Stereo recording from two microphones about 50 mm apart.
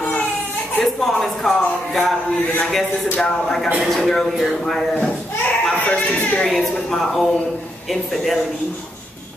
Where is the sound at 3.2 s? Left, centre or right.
Centre.